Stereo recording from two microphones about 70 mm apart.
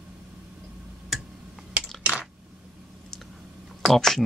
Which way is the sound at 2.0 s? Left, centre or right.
Centre.